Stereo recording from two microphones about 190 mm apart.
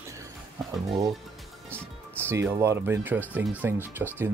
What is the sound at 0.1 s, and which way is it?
Music, 15° right (ahead or behind).